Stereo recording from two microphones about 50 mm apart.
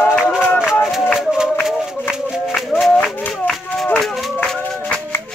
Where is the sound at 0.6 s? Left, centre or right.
Centre.